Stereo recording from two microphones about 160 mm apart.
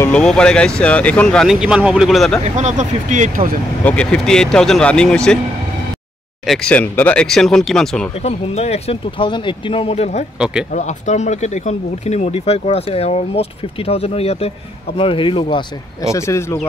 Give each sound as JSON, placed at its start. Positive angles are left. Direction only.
{"t": 0.0, "sound": "speech", "side_deg": 5}
{"t": 2.4, "sound": "speech", "side_deg": -45}
{"t": 3.8, "sound": "speech", "side_deg": 5}
{"t": 6.4, "sound": "speech", "side_deg": 5}
{"t": 8.2, "sound": "speech", "side_deg": 40}
{"t": 16.0, "sound": "speech", "side_deg": 20}